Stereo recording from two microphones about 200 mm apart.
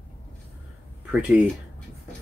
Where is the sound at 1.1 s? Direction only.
5° right (ahead or behind).